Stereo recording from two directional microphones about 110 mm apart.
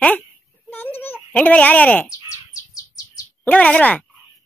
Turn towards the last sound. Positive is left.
turn(degrees=10)  # may be behind; listen again after turning